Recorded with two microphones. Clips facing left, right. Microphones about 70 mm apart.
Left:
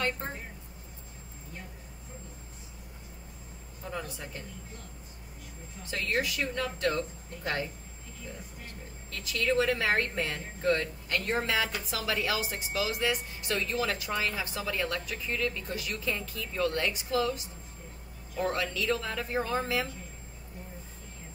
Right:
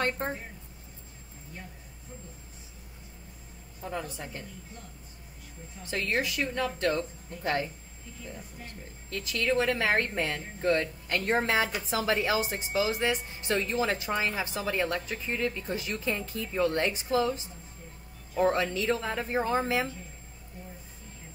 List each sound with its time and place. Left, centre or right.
0.2 s speech: right
5.9 s a woman's voice: right
9.1 s a woman's voice: right